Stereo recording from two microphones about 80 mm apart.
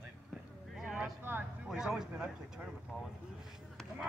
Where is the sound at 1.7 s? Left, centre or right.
Centre.